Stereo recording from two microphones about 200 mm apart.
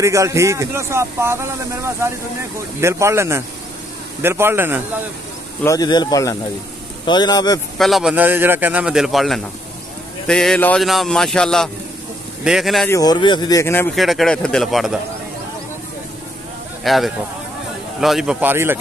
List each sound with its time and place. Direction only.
0.0 s speech: 15° right (ahead or behind)
5.6 s speech: 15° left (ahead or behind)
7.7 s a man's voice: centre (ahead or behind)
12.9 s speech: 20° left (ahead or behind)
13.9 s a man's voice: centre (ahead or behind)
16.8 s a man's voice: centre (ahead or behind)